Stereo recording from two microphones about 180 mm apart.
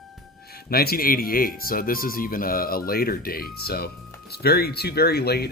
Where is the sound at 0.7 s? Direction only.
60° left (ahead or behind).